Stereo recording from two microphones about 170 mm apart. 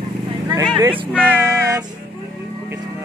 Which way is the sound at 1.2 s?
10° right (ahead or behind).